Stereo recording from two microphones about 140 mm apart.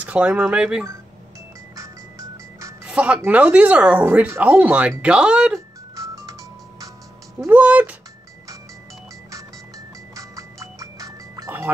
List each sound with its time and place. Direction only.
0.0 s speech: 10° right (ahead or behind)
1.8 s music: 25° right (ahead or behind)
2.8 s speech: 10° right (ahead or behind)
5.9 s music: 25° right (ahead or behind)
7.4 s speech: 10° right (ahead or behind)
10.1 s music: 25° right (ahead or behind)